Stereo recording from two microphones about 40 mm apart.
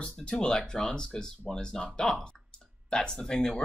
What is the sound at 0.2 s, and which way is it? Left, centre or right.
Speech, left.